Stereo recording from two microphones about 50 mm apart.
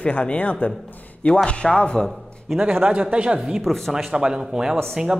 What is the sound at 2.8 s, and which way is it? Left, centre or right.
Speech, right.